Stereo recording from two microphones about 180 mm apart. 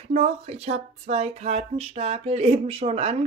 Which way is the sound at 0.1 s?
35° right (ahead or behind).